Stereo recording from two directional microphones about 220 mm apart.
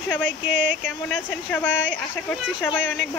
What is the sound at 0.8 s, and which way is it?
Speech, 10° left (ahead or behind).